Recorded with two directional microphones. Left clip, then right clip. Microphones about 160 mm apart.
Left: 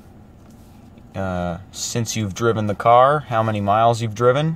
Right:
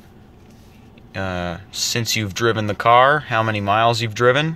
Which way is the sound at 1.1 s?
10° left (ahead or behind).